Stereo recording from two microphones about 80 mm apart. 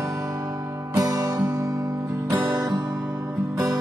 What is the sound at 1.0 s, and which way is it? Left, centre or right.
Music, right.